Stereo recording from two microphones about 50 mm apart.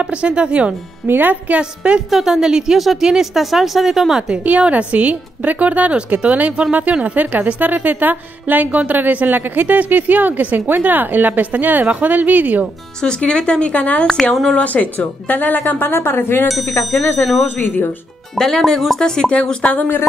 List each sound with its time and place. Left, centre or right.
0.0 s a woman's voice: right
1.0 s speech: right
1.3 s a woman's voice: right
2.0 s a woman's voice: centre
4.5 s a woman's voice: right
13.2 s speech: centre; by 15.9 s left
15.9 s speech: left
17.2 s speech: centre
17.6 s speech: left
18.3 s speech: centre
18.9 s speech: centre